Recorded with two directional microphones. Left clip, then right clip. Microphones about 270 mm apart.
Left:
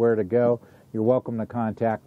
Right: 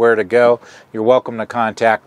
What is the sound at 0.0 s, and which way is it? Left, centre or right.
Speech, centre.